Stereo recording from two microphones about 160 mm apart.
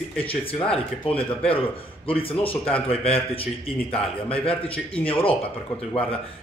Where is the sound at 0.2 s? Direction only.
35° left (ahead or behind).